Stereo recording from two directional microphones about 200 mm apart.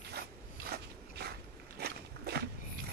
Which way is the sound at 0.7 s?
55° right (ahead or behind).